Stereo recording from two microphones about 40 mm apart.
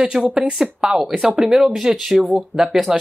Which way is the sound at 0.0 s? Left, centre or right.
Right.